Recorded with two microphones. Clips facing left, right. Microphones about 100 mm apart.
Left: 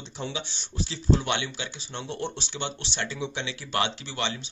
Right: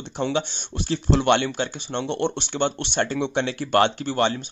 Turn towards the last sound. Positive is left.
turn(degrees=-45)  # may be behind; listen again after turning